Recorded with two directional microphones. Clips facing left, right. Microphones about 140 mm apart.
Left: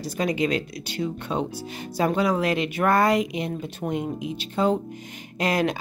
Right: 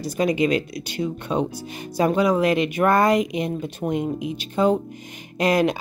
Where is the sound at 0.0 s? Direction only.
15° right (ahead or behind).